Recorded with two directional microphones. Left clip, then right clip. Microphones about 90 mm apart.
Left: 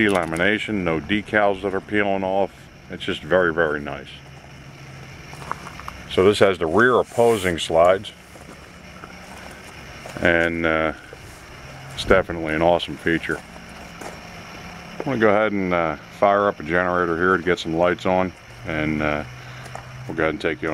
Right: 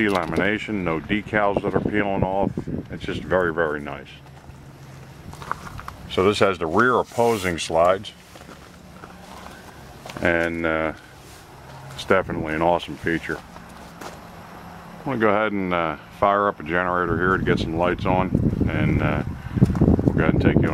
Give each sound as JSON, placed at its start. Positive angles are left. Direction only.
{"t": 0.0, "sound": "speech", "side_deg": 5}
{"t": 5.5, "sound": "a sound", "side_deg": -20}
{"t": 6.0, "sound": "speech", "side_deg": 0}
{"t": 10.2, "sound": "speech", "side_deg": 0}
{"t": 12.1, "sound": "speech", "side_deg": 5}
{"t": 15.0, "sound": "speech", "side_deg": 5}